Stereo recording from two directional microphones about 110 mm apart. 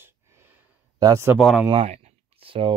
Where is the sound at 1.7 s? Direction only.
70° right (ahead or behind).